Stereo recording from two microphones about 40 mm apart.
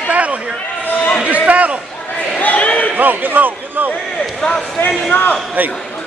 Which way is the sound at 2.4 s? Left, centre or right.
Left.